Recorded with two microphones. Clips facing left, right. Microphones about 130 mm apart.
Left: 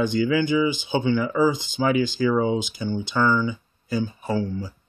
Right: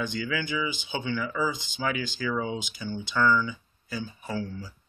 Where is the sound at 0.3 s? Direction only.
30° left (ahead or behind).